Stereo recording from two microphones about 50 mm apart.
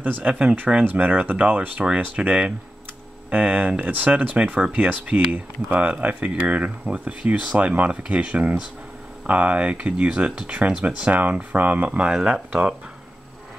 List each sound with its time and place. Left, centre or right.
0.2 s speech: right
1.0 s speech: right
2.1 s speech: right
5.8 s speech: right
11.5 s speech: right; by 12.7 s centre